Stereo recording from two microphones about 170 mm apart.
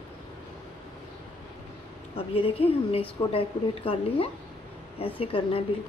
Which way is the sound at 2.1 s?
35° left (ahead or behind).